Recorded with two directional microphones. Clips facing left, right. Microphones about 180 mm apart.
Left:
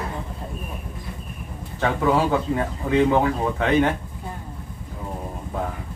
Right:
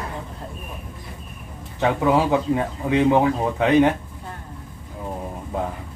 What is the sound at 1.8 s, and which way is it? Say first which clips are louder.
Speech: right 2 dB; 15° right (ahead or behind).